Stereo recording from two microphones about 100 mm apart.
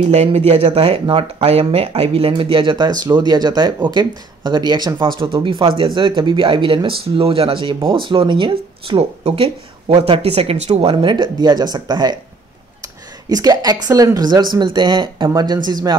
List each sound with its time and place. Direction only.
0.1 s speech: 90° right; by 12.2 s 45° right (ahead or behind)
13.3 s speech: 40° right (ahead or behind)